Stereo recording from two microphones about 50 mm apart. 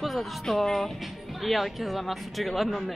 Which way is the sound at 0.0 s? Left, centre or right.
Centre.